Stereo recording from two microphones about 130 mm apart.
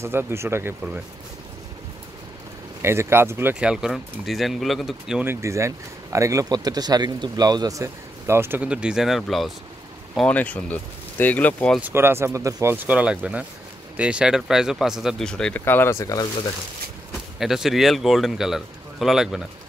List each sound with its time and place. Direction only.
0.0 s speech: 20° right (ahead or behind)
2.8 s speech: 20° right (ahead or behind); by 5.2 s centre (ahead or behind)
5.2 s speech: 20° right (ahead or behind); by 11.7 s 10° left (ahead or behind)
11.8 s speech: 20° right (ahead or behind); by 15.6 s 5° left (ahead or behind)
15.6 s speech: 15° left (ahead or behind)
17.4 s speech: centre (ahead or behind)